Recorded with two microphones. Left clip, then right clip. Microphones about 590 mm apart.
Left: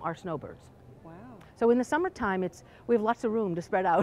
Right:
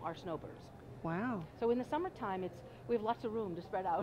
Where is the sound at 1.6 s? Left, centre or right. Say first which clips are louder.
Left 10 dB; left.